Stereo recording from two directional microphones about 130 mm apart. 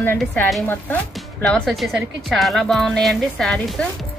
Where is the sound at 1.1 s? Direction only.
5° left (ahead or behind).